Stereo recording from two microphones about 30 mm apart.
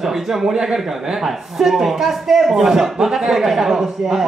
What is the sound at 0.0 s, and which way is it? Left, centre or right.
A woman's voice, centre.